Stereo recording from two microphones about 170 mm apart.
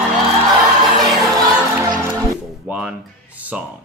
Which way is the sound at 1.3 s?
20° right (ahead or behind).